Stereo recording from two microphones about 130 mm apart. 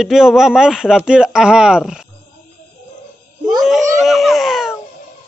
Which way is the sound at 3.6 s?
Centre (ahead or behind).